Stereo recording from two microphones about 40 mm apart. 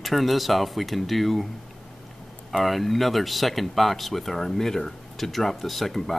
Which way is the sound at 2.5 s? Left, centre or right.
Centre.